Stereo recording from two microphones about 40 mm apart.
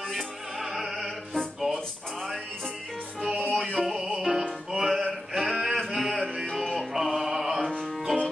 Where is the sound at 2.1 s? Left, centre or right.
Centre.